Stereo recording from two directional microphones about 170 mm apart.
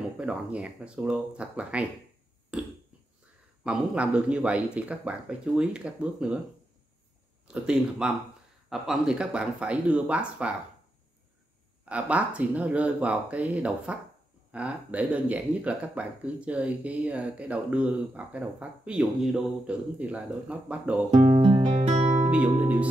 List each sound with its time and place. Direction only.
0.2 s speech: 5° right (ahead or behind)
2.5 s a sound: 5° right (ahead or behind)
3.6 s speech: 5° right (ahead or behind)
7.4 s speech: 5° right (ahead or behind)
11.8 s speech: 10° right (ahead or behind)
21.1 s music: 25° right (ahead or behind)
21.6 s music: 40° right (ahead or behind)
22.3 s speech: 10° right (ahead or behind)